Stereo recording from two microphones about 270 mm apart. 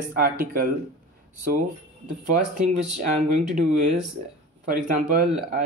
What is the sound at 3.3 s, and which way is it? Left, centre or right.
Speech, right.